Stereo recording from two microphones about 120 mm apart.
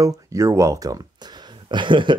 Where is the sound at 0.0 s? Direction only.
25° right (ahead or behind).